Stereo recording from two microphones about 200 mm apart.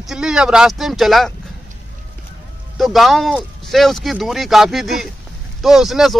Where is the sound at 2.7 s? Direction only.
Centre (ahead or behind).